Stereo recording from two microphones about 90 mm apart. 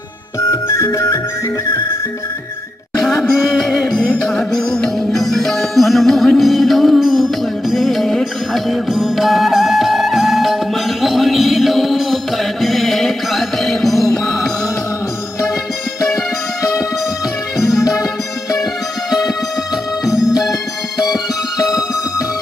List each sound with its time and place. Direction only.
0.7 s music: 30° left (ahead or behind)
3.0 s music: 5° left (ahead or behind)
17.6 s music: 40° left (ahead or behind)
19.0 s music: centre (ahead or behind)
20.1 s music: 40° left (ahead or behind)